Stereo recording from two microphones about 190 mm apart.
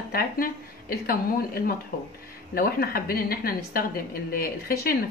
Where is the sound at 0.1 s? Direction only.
50° left (ahead or behind).